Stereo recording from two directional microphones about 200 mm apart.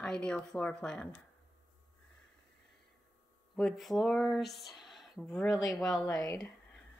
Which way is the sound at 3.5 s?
Centre (ahead or behind).